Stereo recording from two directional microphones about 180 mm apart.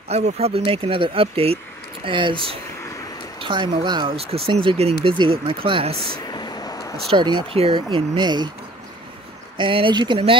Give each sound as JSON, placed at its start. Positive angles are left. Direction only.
{"t": 0.1, "sound": "speech", "side_deg": -35}
{"t": 6.1, "sound": "a sound", "side_deg": 25}
{"t": 7.1, "sound": "speech", "side_deg": -25}
{"t": 9.6, "sound": "speech", "side_deg": -30}